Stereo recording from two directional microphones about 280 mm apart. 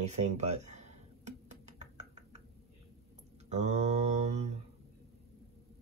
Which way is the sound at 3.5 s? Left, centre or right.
Right.